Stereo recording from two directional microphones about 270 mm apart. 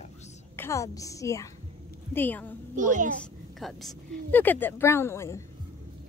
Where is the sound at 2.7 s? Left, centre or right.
Right.